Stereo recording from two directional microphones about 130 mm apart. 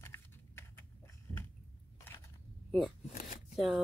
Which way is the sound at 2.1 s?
15° left (ahead or behind).